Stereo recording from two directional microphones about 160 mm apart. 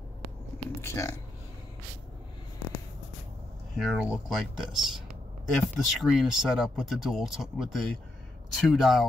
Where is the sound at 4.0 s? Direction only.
5° right (ahead or behind).